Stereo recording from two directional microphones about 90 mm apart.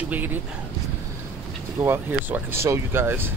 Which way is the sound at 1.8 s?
25° right (ahead or behind).